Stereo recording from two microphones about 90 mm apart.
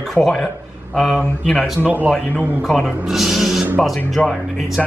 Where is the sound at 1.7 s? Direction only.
20° right (ahead or behind).